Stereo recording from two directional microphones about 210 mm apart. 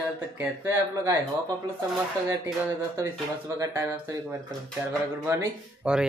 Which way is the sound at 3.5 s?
10° right (ahead or behind).